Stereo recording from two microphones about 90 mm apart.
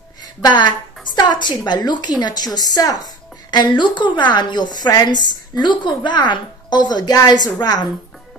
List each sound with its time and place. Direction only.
0.4 s a woman's voice: 55° left (ahead or behind)